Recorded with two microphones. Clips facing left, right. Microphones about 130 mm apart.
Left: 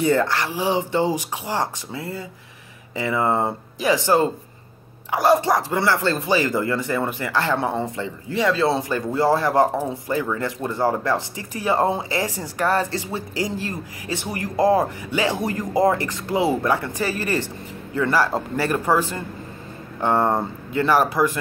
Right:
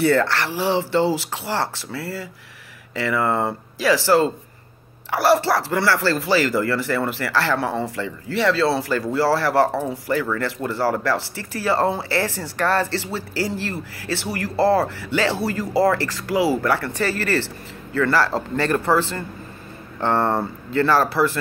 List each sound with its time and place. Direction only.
0.0 s speech: 15° left (ahead or behind)